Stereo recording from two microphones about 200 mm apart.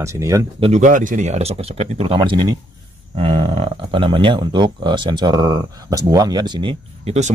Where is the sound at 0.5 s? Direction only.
30° right (ahead or behind).